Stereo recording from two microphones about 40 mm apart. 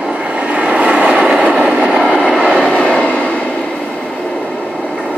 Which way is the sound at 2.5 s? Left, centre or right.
Left.